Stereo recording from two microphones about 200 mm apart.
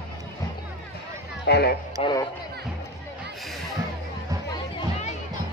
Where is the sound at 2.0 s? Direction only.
20° left (ahead or behind).